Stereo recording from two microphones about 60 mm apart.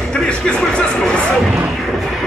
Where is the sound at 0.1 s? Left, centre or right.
Centre.